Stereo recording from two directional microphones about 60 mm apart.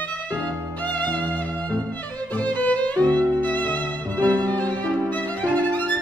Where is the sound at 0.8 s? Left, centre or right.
Left.